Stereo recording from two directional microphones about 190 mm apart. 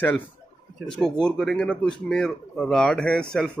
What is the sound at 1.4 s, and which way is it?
Speech, 5° left (ahead or behind).